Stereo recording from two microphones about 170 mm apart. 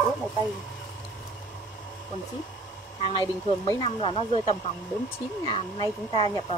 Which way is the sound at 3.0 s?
35° left (ahead or behind).